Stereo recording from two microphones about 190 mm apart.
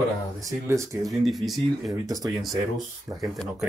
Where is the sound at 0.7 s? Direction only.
15° right (ahead or behind).